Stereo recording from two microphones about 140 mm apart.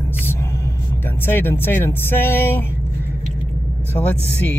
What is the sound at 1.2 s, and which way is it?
Speech, 15° left (ahead or behind).